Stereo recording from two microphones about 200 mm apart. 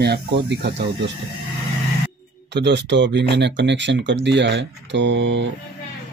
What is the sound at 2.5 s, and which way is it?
Speech, 60° right (ahead or behind).